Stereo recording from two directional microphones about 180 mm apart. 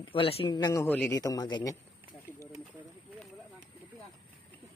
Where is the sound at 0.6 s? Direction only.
20° left (ahead or behind).